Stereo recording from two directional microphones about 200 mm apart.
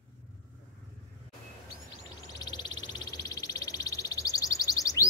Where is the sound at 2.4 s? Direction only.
20° left (ahead or behind).